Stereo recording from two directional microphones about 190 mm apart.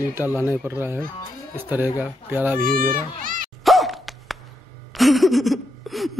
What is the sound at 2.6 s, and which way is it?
Speech, 45° right (ahead or behind).